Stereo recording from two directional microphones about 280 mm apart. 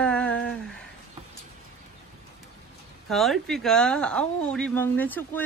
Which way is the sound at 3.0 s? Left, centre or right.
Centre.